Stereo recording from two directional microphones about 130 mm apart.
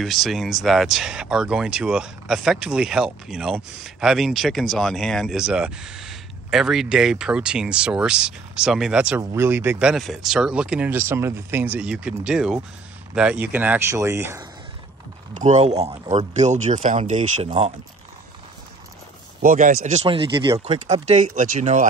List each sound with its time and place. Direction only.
0.0 s speech: centre (ahead or behind)
9.2 s speech: 20° right (ahead or behind)
15.3 s speech: 65° right (ahead or behind)
17.0 s speech: 50° right (ahead or behind)
19.4 s speech: 90° right
20.1 s speech: 40° right (ahead or behind)
20.8 s speech: 60° right (ahead or behind)